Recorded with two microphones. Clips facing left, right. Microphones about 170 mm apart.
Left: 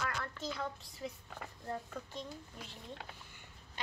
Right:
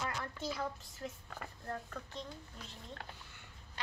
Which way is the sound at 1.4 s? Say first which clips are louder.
Left 1 dB; 10° left (ahead or behind).